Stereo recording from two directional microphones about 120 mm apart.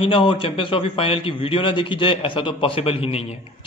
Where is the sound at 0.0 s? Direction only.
45° left (ahead or behind).